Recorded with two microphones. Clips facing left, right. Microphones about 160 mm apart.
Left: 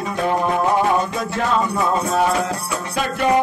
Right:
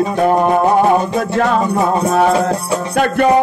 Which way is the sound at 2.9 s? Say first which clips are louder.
Right 8 dB; 60° right (ahead or behind).